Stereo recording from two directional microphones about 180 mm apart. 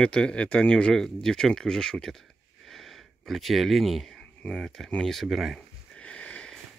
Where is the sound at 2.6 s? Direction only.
Centre (ahead or behind).